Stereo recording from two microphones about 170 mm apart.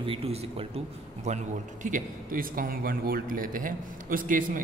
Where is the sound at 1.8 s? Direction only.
55° right (ahead or behind).